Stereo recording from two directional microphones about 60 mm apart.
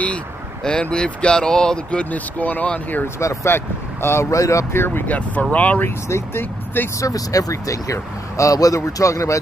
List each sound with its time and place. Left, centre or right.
0.7 s speech: centre
1.9 s speech: left
3.4 s speech: left
4.3 s speech: left
4.7 s speech: left
5.0 s speech: left
6.0 s speech: left
7.0 s speech: left